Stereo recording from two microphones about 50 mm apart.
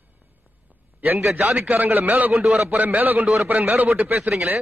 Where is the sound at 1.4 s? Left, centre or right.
Right.